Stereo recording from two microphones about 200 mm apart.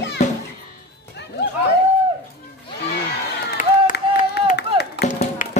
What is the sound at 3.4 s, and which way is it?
Crowd, 45° left (ahead or behind).